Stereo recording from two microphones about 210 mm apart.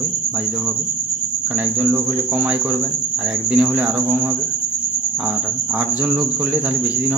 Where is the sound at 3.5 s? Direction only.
5° right (ahead or behind).